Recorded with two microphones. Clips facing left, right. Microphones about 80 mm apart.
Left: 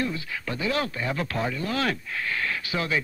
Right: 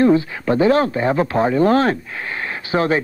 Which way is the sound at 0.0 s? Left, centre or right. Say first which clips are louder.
Right 15 dB; right.